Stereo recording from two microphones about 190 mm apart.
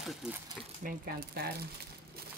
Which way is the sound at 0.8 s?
55° right (ahead or behind).